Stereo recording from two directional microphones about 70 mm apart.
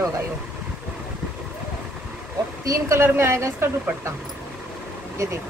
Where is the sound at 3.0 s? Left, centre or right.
Right.